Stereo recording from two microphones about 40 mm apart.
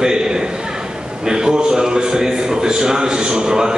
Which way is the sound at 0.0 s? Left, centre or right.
Centre.